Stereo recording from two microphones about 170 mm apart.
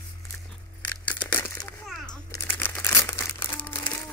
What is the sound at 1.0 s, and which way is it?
Crumpling, 10° left (ahead or behind).